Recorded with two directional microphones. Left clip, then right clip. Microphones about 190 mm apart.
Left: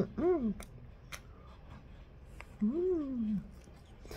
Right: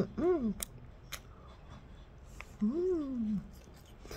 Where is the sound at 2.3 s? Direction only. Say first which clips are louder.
Even; centre (ahead or behind).